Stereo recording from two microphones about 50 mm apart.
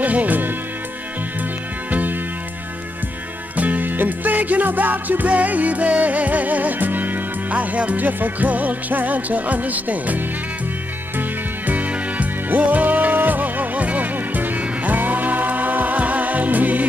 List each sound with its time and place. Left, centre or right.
0.0 s speech: right
1.9 s music: right
3.5 s music: right